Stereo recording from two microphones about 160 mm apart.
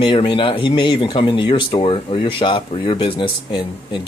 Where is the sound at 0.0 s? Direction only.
30° left (ahead or behind).